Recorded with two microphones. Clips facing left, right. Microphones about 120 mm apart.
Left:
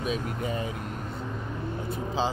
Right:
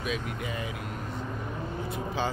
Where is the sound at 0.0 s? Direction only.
40° left (ahead or behind).